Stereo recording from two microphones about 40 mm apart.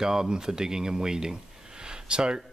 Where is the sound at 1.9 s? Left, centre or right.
Right.